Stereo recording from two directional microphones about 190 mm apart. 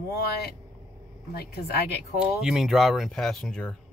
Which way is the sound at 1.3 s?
55° left (ahead or behind).